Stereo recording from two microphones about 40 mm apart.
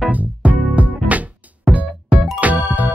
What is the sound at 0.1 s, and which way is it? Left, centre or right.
Music, right.